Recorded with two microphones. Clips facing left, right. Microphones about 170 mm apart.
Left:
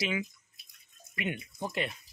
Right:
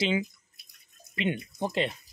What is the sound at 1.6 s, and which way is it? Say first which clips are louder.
Speech: right 5 dB; 25° right (ahead or behind).